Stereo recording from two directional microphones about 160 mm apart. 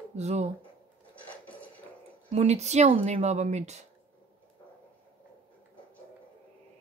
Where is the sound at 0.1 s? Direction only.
45° right (ahead or behind).